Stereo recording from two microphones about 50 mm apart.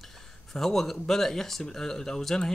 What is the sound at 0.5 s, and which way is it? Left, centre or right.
Speech, centre.